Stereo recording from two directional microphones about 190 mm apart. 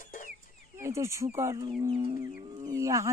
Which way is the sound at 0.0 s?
45° left (ahead or behind).